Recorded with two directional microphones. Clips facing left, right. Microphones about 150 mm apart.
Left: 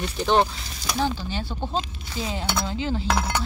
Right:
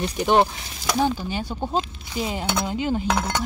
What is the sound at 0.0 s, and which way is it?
Speech, 15° right (ahead or behind).